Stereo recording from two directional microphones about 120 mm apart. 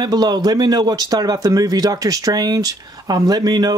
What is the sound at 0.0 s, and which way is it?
Speech, 35° right (ahead or behind).